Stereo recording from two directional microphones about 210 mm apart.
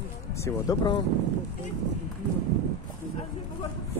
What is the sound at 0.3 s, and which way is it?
Speech, 15° left (ahead or behind).